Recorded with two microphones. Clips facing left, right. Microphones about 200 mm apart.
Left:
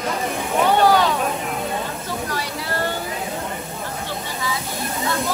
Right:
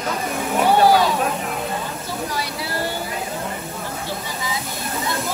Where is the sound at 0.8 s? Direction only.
10° right (ahead or behind).